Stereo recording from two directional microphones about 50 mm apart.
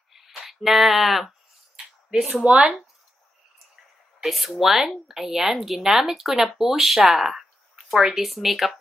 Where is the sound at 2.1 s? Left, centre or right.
Centre.